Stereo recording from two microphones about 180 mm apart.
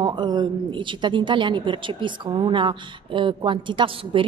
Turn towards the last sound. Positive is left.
turn(degrees=-30)  # may be behind; listen again after turning